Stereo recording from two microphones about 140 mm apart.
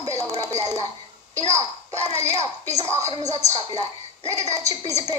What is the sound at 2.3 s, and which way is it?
A child's voice, 50° right (ahead or behind).